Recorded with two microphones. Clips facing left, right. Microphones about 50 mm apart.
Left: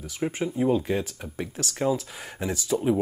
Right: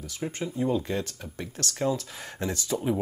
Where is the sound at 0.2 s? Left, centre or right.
Centre.